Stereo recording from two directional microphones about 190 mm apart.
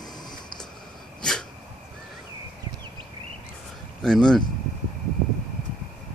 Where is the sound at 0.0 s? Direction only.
20° left (ahead or behind).